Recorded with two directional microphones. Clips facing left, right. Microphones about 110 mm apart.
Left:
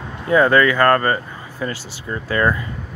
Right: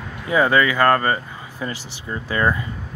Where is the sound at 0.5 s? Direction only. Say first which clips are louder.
Left 2 dB; 20° right (ahead or behind).